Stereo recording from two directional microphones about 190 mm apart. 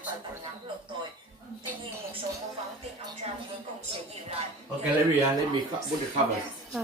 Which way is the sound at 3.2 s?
30° right (ahead or behind).